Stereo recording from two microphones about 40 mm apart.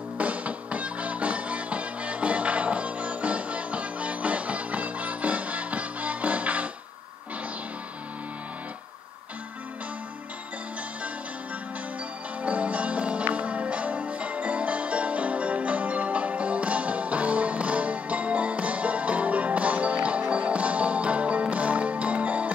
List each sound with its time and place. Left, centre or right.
0.2 s music: right
12.4 s music: right